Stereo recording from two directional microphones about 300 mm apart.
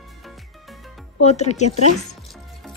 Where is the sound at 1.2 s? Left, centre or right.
Left.